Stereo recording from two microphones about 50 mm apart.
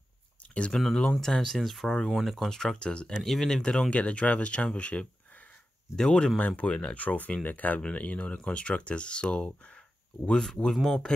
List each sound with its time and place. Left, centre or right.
0.7 s speech: centre
3.2 s speech: centre
3.9 s speech: left; by 11.1 s centre